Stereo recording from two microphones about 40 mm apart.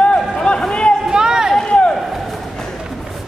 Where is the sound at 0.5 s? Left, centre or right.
Left.